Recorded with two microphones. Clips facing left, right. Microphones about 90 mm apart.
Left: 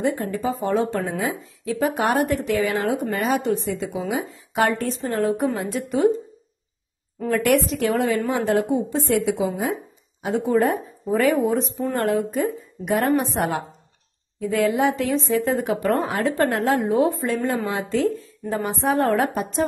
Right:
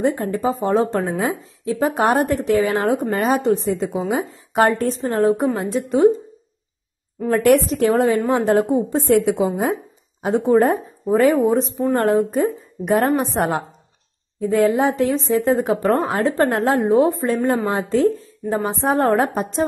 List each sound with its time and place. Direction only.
0.3 s speech: 30° right (ahead or behind)
7.2 s speech: 30° right (ahead or behind)